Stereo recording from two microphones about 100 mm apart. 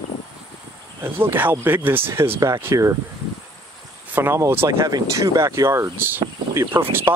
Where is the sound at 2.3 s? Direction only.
35° right (ahead or behind).